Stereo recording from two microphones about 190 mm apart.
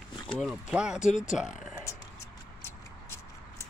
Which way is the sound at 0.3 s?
Centre (ahead or behind).